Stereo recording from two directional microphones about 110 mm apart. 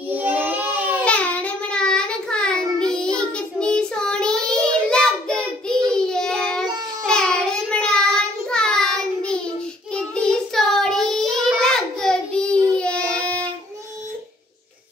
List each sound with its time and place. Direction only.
0.1 s baby cry: 15° right (ahead or behind)
1.0 s child singing: 10° left (ahead or behind)